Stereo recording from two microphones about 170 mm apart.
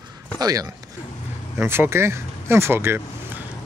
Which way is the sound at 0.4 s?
20° right (ahead or behind).